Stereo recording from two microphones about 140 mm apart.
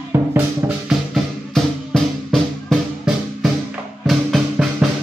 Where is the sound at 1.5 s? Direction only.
5° left (ahead or behind).